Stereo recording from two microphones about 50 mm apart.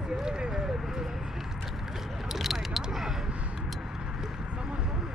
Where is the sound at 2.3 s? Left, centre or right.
Centre.